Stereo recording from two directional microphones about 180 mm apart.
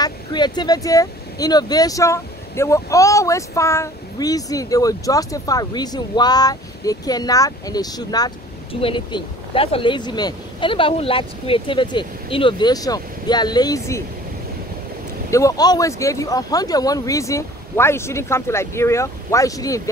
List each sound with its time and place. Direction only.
0.0 s speech: 25° left (ahead or behind)
15.3 s speech: 20° left (ahead or behind)